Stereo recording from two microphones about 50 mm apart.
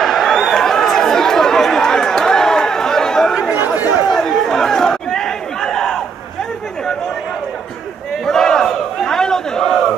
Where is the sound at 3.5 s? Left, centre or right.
Right.